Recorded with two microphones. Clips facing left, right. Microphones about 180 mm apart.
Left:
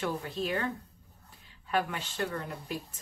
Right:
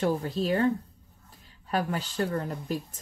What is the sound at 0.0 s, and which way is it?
A woman's voice, 35° right (ahead or behind).